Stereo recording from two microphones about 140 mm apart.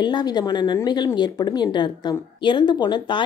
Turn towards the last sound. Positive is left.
turn(degrees=30)  # may be behind; listen again after turning